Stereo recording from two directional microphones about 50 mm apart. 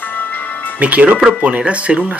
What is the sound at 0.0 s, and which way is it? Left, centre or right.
Music, left.